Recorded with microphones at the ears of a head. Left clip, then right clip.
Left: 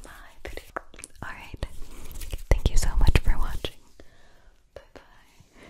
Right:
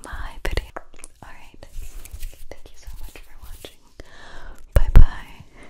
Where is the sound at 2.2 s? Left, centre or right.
Left.